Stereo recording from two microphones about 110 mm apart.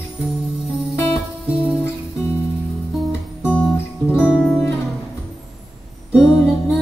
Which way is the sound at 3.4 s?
20° left (ahead or behind).